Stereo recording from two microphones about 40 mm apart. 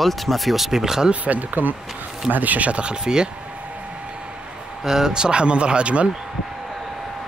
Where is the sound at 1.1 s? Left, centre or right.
Right.